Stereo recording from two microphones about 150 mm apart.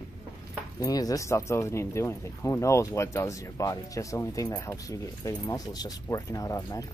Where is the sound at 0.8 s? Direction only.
25° left (ahead or behind).